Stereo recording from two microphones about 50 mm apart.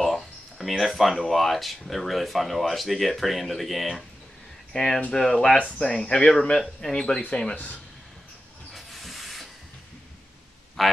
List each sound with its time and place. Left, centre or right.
0.0 s a sound: centre
1.3 s speech: centre; by 7.5 s left
8.7 s hiss: centre
10.8 s speech: centre